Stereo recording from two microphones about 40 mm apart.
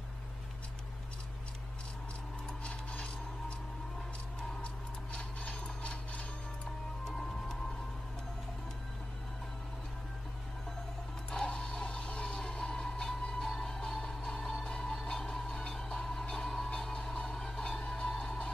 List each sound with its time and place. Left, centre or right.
2.6 s rub: left
5.1 s mechanisms: left
11.3 s a sound: centre
13.2 s music: centre
14.6 s vehicle: centre
16.6 s music: centre